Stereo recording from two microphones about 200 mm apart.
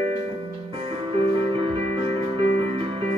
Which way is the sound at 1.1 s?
25° right (ahead or behind).